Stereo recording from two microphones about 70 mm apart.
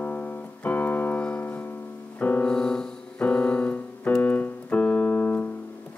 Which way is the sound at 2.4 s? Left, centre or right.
Centre.